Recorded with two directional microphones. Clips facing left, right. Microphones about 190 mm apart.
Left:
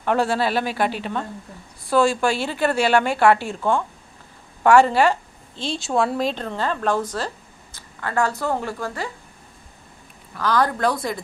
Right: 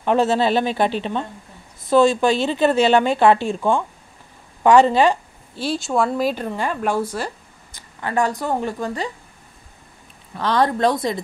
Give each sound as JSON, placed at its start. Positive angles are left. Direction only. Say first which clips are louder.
{"t": 0.0, "sound": "a woman's voice", "louder": "right 3 dB", "side_deg": -20}
{"t": 5.6, "sound": "speech", "louder": "right 2 dB", "side_deg": 0}
{"t": 10.3, "sound": "a woman's voice", "louder": "right 2 dB", "side_deg": -25}